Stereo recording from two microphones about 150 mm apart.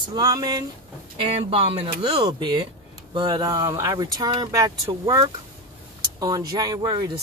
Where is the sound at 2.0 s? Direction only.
30° right (ahead or behind).